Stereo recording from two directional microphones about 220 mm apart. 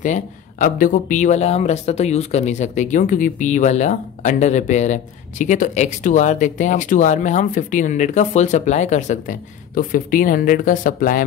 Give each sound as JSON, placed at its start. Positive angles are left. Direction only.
{"t": 0.0, "sound": "speech", "side_deg": 35}